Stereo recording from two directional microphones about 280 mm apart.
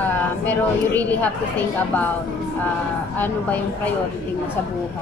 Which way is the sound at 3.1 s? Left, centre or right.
Centre.